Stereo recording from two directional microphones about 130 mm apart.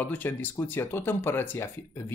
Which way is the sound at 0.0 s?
15° left (ahead or behind).